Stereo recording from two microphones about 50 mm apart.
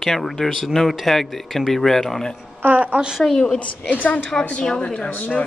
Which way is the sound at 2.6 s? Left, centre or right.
Right.